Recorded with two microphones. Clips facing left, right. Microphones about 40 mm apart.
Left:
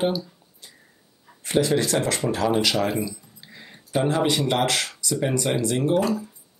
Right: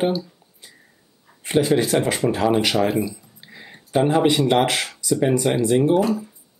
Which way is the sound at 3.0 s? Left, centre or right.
Right.